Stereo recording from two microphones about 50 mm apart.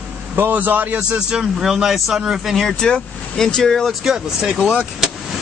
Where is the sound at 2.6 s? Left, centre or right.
Centre.